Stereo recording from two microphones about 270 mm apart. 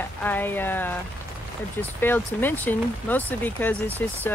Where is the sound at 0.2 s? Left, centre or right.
Centre.